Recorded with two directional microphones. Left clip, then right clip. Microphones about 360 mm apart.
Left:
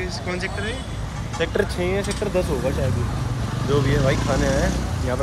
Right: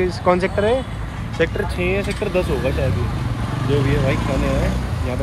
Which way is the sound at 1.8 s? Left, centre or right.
Left.